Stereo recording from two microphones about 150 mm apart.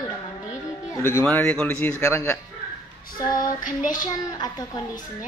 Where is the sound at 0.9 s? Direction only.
20° left (ahead or behind).